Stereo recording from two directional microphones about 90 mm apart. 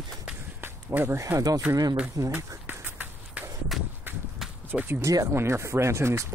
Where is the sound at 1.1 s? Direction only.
35° right (ahead or behind).